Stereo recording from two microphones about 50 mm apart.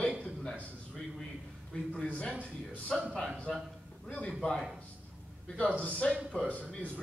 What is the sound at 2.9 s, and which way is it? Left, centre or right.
Speech, centre.